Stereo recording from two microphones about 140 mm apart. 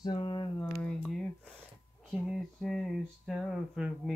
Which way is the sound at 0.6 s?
5° left (ahead or behind).